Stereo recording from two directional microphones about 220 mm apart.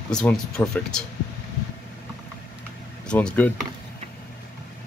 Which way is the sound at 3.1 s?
5° left (ahead or behind).